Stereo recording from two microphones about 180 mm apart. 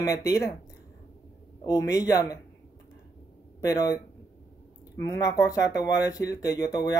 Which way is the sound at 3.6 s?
15° left (ahead or behind).